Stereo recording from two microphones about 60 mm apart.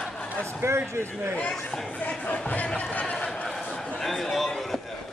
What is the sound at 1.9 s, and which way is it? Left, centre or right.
Speech, left.